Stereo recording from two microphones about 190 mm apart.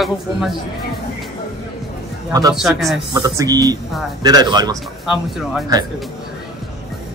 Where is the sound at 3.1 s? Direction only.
20° right (ahead or behind).